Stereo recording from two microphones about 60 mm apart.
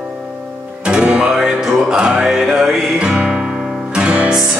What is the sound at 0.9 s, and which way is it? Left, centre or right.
Music, centre.